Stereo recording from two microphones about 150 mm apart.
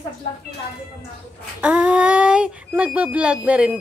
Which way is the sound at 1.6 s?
10° right (ahead or behind).